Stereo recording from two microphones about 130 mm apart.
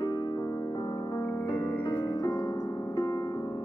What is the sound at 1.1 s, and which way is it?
Music, 35° left (ahead or behind).